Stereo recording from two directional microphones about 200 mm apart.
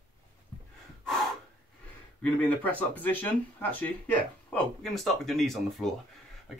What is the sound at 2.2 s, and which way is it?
Speech, 5° left (ahead or behind).